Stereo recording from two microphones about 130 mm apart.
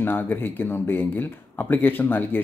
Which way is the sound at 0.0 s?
15° left (ahead or behind).